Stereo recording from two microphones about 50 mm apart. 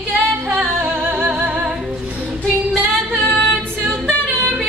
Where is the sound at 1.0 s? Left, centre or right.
Right.